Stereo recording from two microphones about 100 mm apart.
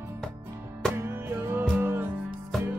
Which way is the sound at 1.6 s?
20° right (ahead or behind).